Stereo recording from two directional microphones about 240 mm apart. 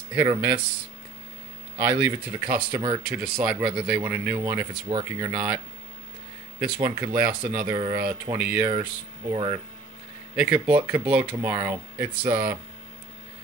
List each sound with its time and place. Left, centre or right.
0.1 s speech: centre
1.8 s speech: centre
6.6 s speech: centre
7.7 s speech: centre
9.3 s speech: right
10.3 s speech: centre